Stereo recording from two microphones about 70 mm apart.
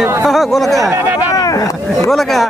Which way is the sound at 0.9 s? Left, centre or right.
Right.